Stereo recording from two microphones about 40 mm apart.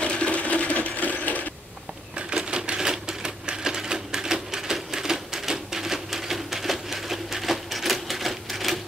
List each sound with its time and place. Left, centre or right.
0.0 s sewing machine: left
2.4 s typewriter: right
3.3 s a sound: centre